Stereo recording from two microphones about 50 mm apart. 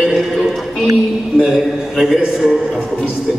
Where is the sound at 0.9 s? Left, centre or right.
Centre.